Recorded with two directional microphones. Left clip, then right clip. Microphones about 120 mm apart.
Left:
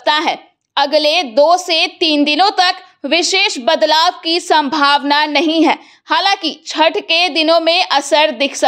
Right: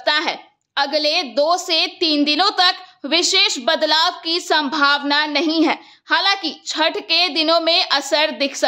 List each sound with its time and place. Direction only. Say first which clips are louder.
0.0 s a woman's voice: left 5 dB; 35° left (ahead or behind)